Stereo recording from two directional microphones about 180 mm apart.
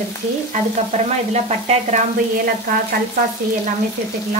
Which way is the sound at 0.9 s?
40° right (ahead or behind).